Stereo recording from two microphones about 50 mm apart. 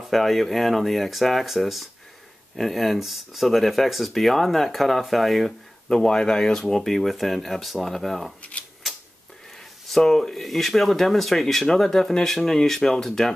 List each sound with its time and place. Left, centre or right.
0.0 s speech: centre
5.9 s speech: centre
8.4 s typewriter: left
9.8 s speech: centre